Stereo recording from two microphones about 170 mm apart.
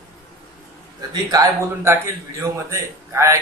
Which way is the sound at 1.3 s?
15° right (ahead or behind).